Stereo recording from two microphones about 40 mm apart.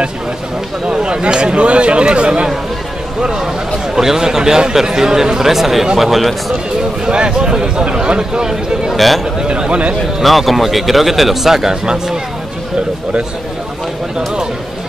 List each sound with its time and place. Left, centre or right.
0.8 s speech: right; by 6.3 s centre
7.1 s speech: right
8.9 s speech: centre
9.4 s speech: right
10.2 s speech: centre